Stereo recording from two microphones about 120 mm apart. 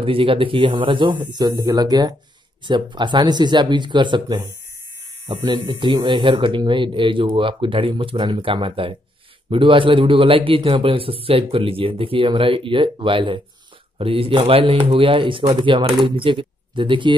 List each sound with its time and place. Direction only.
0.0 s a man's voice: 50° right (ahead or behind)